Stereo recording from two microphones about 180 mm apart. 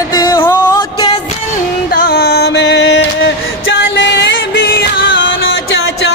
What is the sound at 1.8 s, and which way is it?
Music, 55° left (ahead or behind).